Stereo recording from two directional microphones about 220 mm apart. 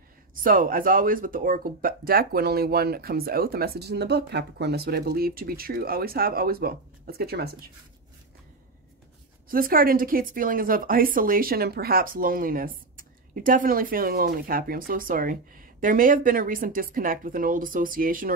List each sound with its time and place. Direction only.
0.4 s speech: 40° right (ahead or behind)
9.5 s speech: 40° right (ahead or behind)